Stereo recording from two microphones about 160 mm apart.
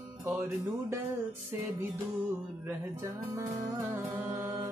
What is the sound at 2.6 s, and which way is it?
Music, 20° right (ahead or behind).